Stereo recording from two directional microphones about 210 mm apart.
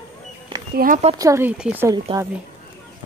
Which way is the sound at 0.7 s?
40° right (ahead or behind).